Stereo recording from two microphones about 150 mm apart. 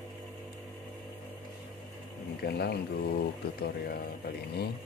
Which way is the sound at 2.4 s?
90° left.